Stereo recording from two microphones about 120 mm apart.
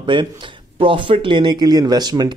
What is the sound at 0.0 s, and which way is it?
Speech, 40° right (ahead or behind).